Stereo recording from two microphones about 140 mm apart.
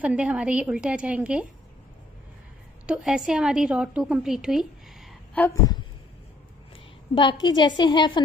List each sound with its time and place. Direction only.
0.0 s a woman's voice: 10° right (ahead or behind)
2.9 s a woman's voice: 5° right (ahead or behind)
5.4 s speech: 10° left (ahead or behind)
7.2 s a woman's voice: 35° left (ahead or behind)